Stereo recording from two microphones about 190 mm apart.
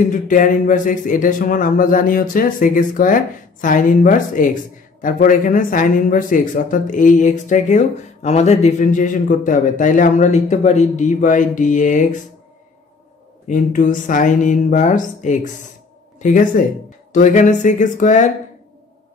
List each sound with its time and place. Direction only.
0.1 s speech: 45° left (ahead or behind)
13.5 s speech: 45° left (ahead or behind)